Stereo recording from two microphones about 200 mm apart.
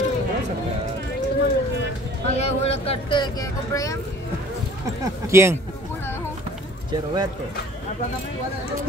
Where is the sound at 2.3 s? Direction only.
30° left (ahead or behind).